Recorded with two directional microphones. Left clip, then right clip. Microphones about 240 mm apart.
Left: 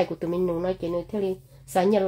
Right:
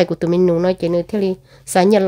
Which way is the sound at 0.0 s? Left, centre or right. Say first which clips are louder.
Right 10 dB; right.